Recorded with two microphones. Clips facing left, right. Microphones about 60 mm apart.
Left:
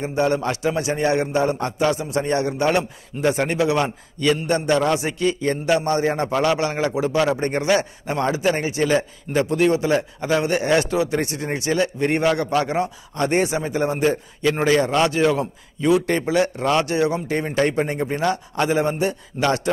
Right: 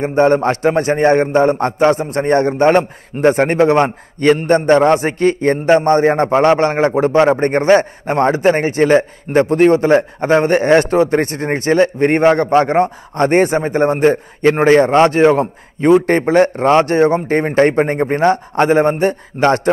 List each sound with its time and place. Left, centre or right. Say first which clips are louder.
0.0 s a man's voice: right 8 dB; right